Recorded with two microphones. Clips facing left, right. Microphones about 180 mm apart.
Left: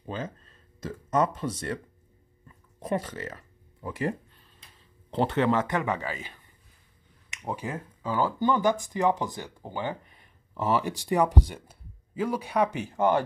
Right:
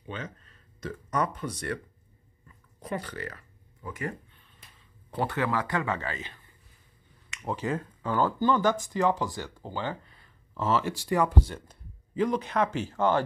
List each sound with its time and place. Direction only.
0.0 s speech: 30° left (ahead or behind)
2.4 s a sound: 25° left (ahead or behind)
5.1 s speech: 25° left (ahead or behind)